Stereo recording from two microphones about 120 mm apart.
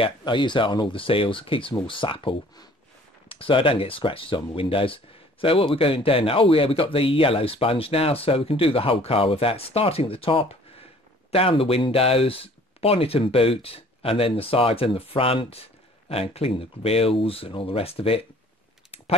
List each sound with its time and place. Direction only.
0.0 s speech: 45° left (ahead or behind)